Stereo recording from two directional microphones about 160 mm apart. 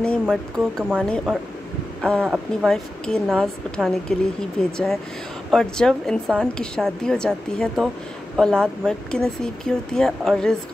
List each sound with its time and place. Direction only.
0.0 s speech: 5° left (ahead or behind)